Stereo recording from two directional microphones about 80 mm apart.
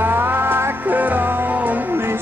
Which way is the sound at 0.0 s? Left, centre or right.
Right.